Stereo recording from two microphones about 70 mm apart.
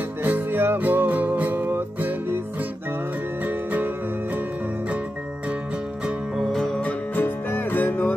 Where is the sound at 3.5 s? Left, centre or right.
Right.